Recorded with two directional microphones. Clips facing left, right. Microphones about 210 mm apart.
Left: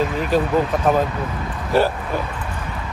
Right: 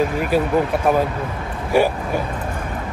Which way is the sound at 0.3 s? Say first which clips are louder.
Even; 10° right (ahead or behind).